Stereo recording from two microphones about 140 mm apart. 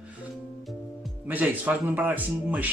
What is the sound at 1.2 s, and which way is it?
Speech, 10° right (ahead or behind).